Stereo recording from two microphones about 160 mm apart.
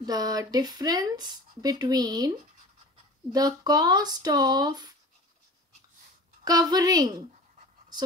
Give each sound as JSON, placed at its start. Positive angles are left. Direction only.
{"t": 0.0, "sound": "speech", "side_deg": -25}
{"t": 6.4, "sound": "speech", "side_deg": -25}